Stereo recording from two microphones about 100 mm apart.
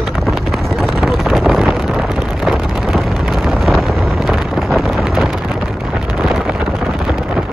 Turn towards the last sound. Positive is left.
turn(degrees=0)  # may be behind; listen again after turning